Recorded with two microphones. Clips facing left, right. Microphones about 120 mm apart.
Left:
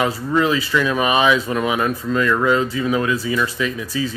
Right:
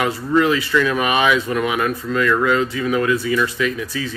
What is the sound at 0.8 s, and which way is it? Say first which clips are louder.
Speech: left 4 dB; 25° left (ahead or behind).